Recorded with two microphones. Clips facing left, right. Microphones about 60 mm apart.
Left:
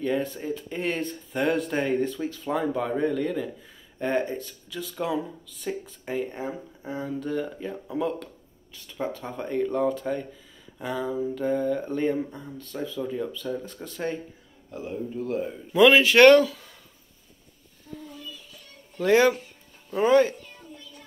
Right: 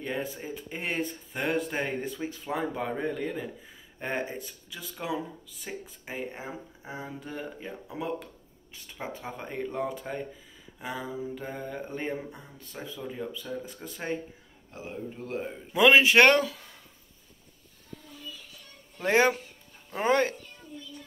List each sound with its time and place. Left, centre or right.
0.0 s speech: centre
14.7 s speech: right
18.9 s speech: right
20.0 s speech: right